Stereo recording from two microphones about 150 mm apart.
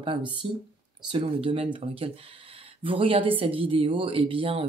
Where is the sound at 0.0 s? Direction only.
35° right (ahead or behind).